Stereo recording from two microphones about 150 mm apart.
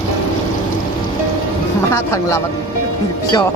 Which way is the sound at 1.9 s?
20° left (ahead or behind).